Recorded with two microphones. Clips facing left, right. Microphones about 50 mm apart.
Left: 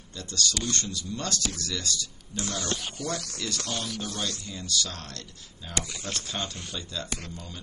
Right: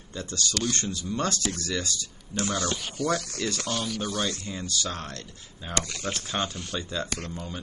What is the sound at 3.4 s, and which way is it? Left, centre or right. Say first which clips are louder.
Speech: right 4 dB; right.